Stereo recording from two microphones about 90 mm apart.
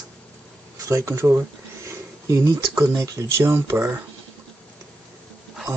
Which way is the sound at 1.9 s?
35° right (ahead or behind).